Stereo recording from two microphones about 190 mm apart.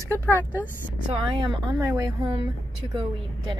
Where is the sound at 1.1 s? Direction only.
25° right (ahead or behind).